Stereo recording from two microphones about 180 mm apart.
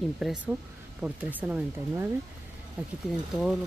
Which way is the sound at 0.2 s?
5° right (ahead or behind).